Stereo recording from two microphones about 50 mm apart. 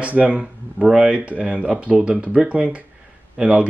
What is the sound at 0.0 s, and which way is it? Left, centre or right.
Speech, right.